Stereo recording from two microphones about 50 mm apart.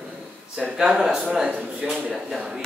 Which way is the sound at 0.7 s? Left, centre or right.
Centre.